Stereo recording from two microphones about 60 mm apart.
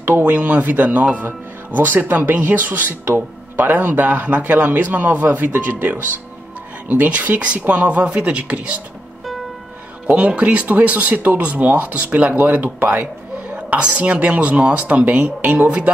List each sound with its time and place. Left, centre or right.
0.2 s speech: right
10.0 s speech: right